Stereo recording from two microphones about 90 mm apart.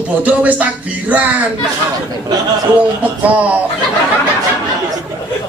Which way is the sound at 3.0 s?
15° right (ahead or behind).